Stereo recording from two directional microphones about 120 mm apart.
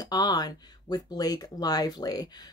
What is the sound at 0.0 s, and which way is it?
Speech, 30° left (ahead or behind).